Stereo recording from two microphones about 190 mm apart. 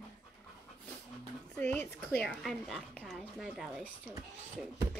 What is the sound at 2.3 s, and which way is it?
A woman's voice, centre (ahead or behind).